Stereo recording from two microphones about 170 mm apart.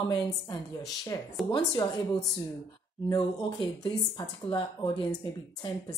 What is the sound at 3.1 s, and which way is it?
A woman's voice, 25° left (ahead or behind).